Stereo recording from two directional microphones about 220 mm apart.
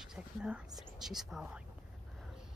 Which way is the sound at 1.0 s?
Centre (ahead or behind).